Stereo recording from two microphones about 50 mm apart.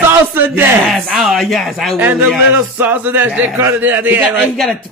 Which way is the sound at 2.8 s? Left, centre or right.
Right.